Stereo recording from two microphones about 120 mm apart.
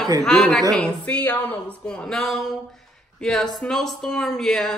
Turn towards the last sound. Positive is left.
turn(degrees=5)  # may be behind; listen again after turning